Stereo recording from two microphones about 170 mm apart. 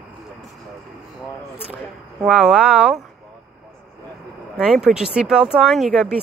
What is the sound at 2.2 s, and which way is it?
Speech, 5° right (ahead or behind).